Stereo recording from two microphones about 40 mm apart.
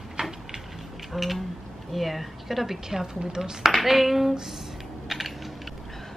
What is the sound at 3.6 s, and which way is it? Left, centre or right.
Speech, centre.